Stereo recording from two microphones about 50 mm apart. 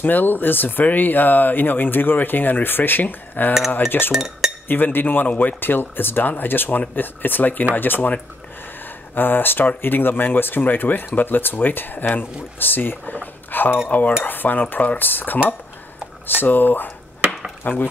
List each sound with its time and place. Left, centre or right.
0.0 s speech: left
4.1 s cutlery: centre
4.6 s speech: left